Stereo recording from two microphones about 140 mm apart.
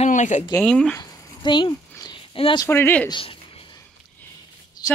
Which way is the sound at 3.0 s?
35° left (ahead or behind).